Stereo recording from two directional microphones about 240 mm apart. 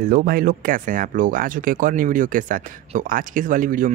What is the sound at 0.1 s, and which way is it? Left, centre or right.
Speech, right.